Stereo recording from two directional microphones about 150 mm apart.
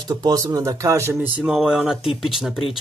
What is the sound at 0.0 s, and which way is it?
Speech, 25° right (ahead or behind).